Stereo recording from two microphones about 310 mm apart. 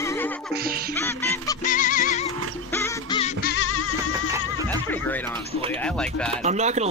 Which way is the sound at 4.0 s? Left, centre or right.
Centre.